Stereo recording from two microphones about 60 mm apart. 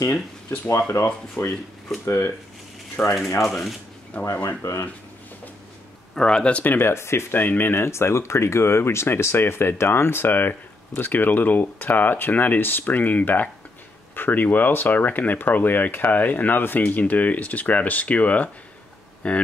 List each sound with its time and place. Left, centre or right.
1.0 s speech: left
1.4 s speech: left
3.4 s speech: centre
4.2 s speech: left
6.1 s speech: centre
6.6 s speech: left
6.9 s speech: left